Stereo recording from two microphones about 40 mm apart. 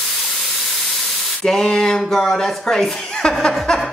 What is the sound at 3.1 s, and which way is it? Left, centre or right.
Chuckle, centre.